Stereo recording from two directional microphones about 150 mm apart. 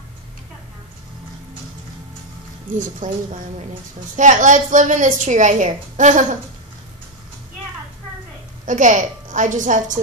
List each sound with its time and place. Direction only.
2.7 s a woman's voice: 60° right (ahead or behind)
4.2 s a woman's voice: 55° right (ahead or behind)
8.6 s a woman's voice: 55° right (ahead or behind)